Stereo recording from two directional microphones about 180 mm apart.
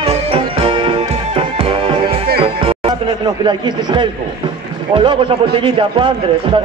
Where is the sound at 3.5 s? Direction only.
25° right (ahead or behind).